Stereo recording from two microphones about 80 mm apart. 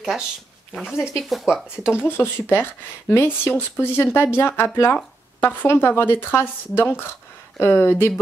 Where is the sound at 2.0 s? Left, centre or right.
Left.